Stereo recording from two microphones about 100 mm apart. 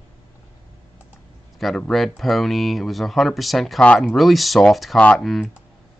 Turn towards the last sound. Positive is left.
turn(degrees=5)  # may be behind; listen again after turning